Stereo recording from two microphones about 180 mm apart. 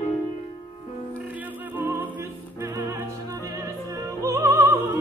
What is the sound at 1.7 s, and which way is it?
Music, 10° right (ahead or behind).